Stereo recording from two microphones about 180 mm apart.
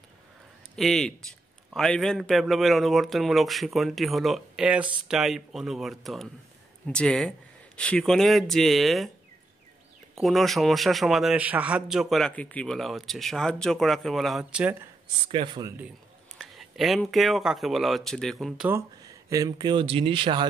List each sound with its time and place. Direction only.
0.7 s a man's voice: centre (ahead or behind)
10.1 s a man's voice: centre (ahead or behind)
15.2 s speech: 30° right (ahead or behind)
16.3 s a man's voice: centre (ahead or behind)
18.7 s speech: 15° right (ahead or behind)